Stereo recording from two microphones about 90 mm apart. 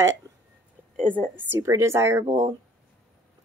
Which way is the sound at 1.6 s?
35° right (ahead or behind).